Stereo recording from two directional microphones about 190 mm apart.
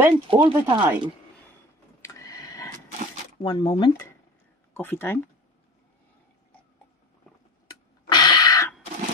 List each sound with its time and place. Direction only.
0.1 s speech: 25° right (ahead or behind)
0.7 s speech: 10° right (ahead or behind)
2.0 s printer: 15° left (ahead or behind)
3.4 s speech: 30° left (ahead or behind)
4.7 s speech: 10° left (ahead or behind)
8.1 s a sound: 20° left (ahead or behind)